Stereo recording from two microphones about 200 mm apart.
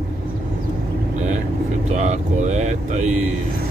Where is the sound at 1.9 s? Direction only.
35° right (ahead or behind).